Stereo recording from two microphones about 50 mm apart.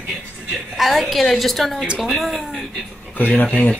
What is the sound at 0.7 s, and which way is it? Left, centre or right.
Speech, centre.